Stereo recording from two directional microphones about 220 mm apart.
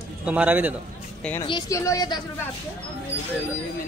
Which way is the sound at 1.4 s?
20° left (ahead or behind).